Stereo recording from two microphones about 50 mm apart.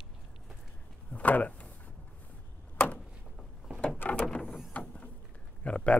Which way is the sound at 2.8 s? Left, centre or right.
Left.